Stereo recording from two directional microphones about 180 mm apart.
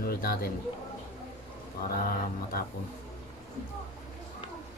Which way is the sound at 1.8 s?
55° left (ahead or behind).